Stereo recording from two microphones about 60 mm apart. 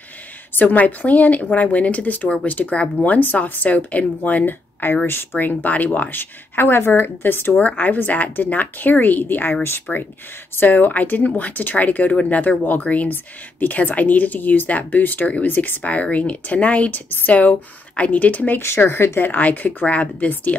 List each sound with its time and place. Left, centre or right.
0.6 s speech: left
7.5 s speech: left
18.9 s speech: left
19.1 s speech: left